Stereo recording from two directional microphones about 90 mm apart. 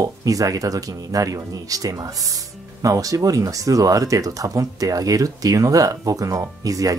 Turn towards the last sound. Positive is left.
turn(degrees=-40)  # may be behind; listen again after turning